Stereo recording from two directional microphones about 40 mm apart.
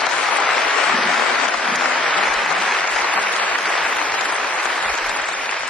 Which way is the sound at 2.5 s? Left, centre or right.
Left.